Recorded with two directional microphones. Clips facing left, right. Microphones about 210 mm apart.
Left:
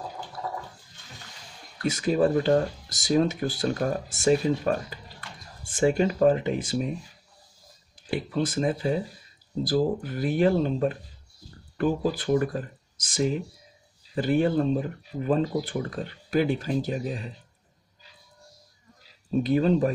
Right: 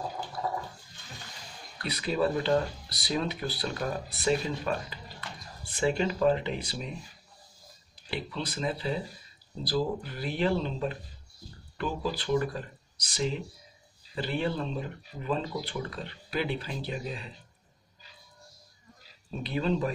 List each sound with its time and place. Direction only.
1.8 s speech: 45° left (ahead or behind)
8.1 s speech: 50° left (ahead or behind)
19.4 s speech: 45° left (ahead or behind)